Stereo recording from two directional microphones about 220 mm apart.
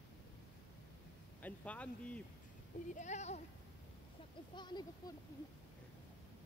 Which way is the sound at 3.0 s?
30° left (ahead or behind).